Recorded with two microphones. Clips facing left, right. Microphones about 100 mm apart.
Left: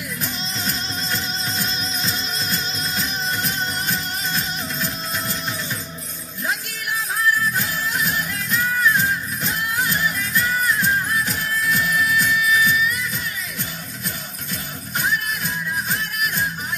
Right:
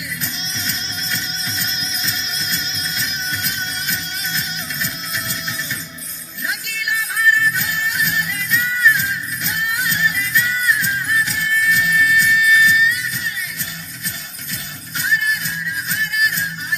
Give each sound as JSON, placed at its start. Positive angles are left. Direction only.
{"t": 0.2, "sound": "music", "side_deg": 40}
{"t": 6.4, "sound": "music", "side_deg": 35}
{"t": 15.0, "sound": "music", "side_deg": 45}